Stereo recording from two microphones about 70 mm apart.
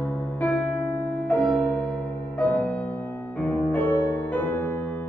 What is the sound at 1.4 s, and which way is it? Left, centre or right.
Music, centre.